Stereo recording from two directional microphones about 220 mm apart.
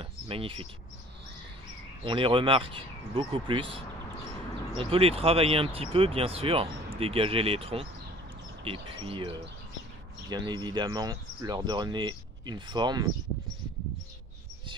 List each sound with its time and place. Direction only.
0.0 s bird: 25° right (ahead or behind)
2.0 s speech: 25° right (ahead or behind)